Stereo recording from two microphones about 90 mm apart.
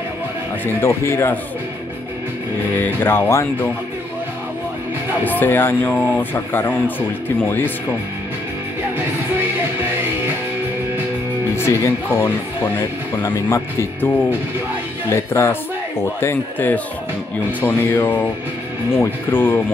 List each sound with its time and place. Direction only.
0.7 s speech: 25° left (ahead or behind)
2.7 s speech: 20° left (ahead or behind)
5.2 s speech: 20° left (ahead or behind)
8.9 s music: 25° right (ahead or behind)
11.5 s speech: 30° left (ahead or behind)
15.0 s speech: 30° left (ahead or behind)